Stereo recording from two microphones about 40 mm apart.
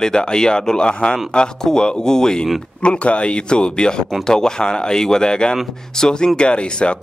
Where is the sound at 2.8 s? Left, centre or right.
Left; by 6.1 s centre.